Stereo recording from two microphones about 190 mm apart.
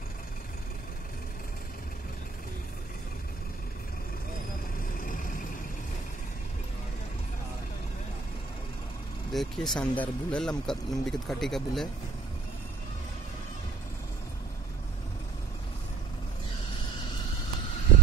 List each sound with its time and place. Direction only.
5.0 s vehicle: 45° left (ahead or behind)
9.3 s speech: centre (ahead or behind)